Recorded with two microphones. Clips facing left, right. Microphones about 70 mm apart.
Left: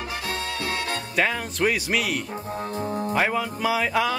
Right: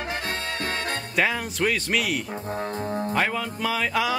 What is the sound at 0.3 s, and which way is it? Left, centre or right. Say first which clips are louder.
Music: even; right.